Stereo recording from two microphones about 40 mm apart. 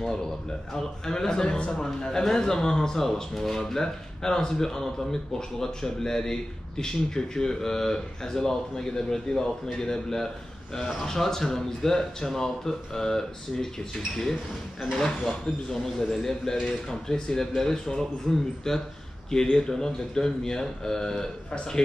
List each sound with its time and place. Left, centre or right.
0.7 s a man's voice: centre
15.0 s a man's voice: centre